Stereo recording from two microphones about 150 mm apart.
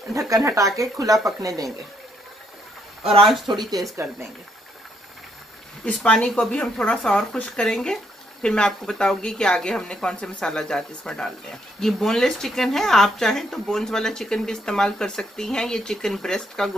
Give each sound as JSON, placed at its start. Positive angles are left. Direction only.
{"t": 0.1, "sound": "speech", "side_deg": -20}
{"t": 3.0, "sound": "speech", "side_deg": -40}
{"t": 3.4, "sound": "speech", "side_deg": -30}
{"t": 3.9, "sound": "speech", "side_deg": -20}
{"t": 5.9, "sound": "speech", "side_deg": 5}